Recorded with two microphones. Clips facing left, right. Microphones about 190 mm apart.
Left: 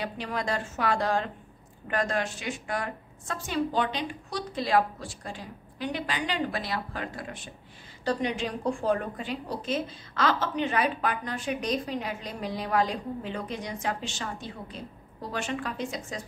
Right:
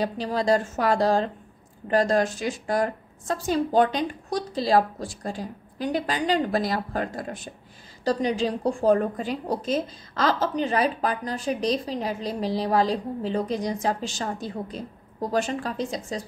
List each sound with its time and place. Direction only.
0.0 s a woman's voice: 35° right (ahead or behind)